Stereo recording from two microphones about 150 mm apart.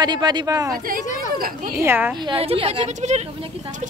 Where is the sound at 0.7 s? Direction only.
70° right (ahead or behind).